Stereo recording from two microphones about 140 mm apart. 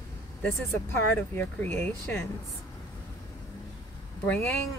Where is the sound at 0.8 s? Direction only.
15° left (ahead or behind).